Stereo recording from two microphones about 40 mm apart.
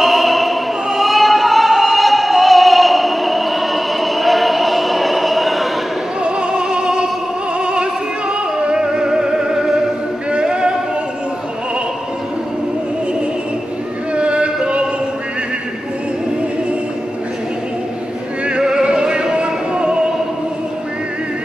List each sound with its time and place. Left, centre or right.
0.0 s opera: centre
6.2 s music: right
7.6 s opera: right
8.7 s music: centre
10.3 s choir: right
14.1 s a sound: right
18.6 s music: centre